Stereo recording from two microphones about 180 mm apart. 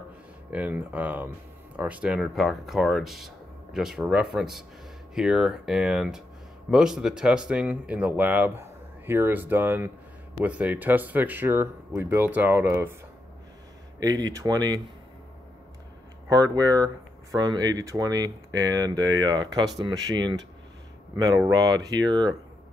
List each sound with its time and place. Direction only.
0.5 s speech: 10° right (ahead or behind)
13.9 s speech: 20° right (ahead or behind)
16.3 s speech: 20° right (ahead or behind)
21.5 s speech: 20° right (ahead or behind)